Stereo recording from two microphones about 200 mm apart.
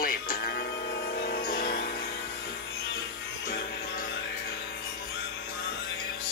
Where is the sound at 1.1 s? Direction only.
45° left (ahead or behind).